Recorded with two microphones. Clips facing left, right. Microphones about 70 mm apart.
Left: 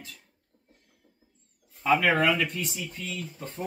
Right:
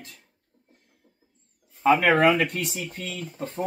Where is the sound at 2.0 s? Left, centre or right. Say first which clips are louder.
Right 4 dB; right.